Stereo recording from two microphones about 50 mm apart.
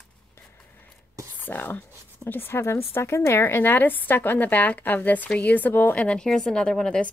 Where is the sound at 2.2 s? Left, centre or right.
Left.